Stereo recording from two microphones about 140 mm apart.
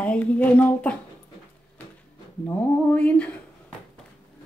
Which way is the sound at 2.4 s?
10° left (ahead or behind).